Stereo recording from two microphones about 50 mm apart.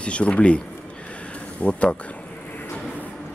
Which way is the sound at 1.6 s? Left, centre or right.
Left.